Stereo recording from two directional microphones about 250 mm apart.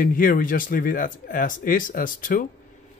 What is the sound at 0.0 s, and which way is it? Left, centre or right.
Speech, left.